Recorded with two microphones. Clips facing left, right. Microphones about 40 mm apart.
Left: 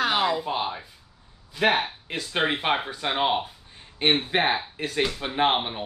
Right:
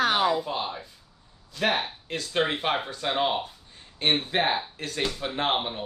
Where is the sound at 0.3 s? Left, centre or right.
Centre.